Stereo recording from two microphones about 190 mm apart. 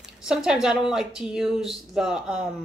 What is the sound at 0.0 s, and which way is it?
Speech, 5° right (ahead or behind).